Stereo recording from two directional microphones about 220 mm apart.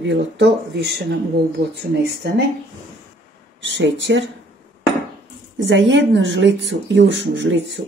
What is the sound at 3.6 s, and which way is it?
Speech, 55° right (ahead or behind).